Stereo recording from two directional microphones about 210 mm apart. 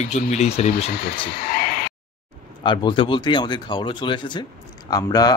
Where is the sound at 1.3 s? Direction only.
45° left (ahead or behind).